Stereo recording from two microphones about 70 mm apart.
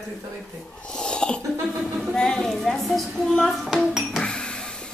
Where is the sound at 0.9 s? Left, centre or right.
Centre.